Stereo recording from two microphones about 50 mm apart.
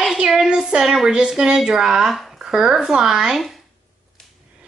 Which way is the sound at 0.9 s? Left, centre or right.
Centre.